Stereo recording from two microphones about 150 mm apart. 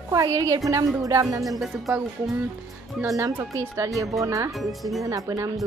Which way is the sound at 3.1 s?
20° right (ahead or behind).